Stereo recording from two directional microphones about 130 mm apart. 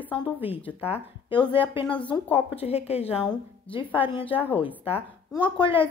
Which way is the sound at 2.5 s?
50° left (ahead or behind).